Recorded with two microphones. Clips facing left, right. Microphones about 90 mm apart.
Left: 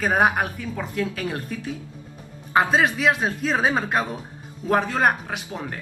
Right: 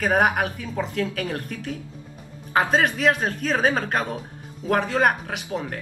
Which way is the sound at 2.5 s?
10° left (ahead or behind).